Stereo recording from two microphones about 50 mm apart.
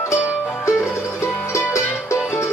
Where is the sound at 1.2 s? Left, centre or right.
Left.